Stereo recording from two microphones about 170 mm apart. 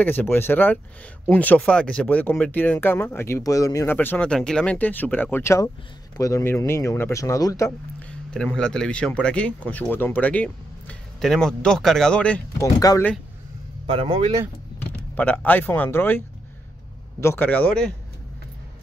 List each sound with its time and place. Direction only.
0.0 s speech: 10° left (ahead or behind)
8.1 s speech: 5° left (ahead or behind)
12.6 s speech: 20° left (ahead or behind)
13.8 s speech: 30° right (ahead or behind)
15.1 s speech: 10° left (ahead or behind)
17.2 s speech: 15° left (ahead or behind)